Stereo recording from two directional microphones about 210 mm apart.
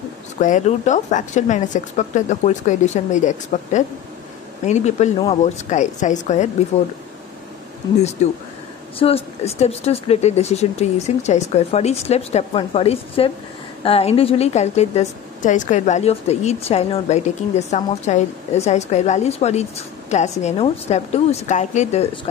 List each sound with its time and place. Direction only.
0.4 s a woman's voice: 35° left (ahead or behind)
8.2 s a woman's voice: 30° left (ahead or behind)